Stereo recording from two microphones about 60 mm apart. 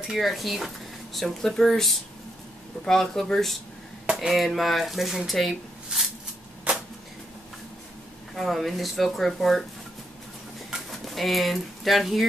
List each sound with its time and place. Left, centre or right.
0.1 s speech: centre
4.0 s a sound: centre
4.3 s speech: centre
8.4 s speech: centre
10.9 s speech: centre